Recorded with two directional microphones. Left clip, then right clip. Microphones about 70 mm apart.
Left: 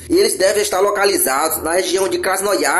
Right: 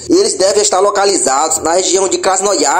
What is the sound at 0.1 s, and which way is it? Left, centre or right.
Speech, right.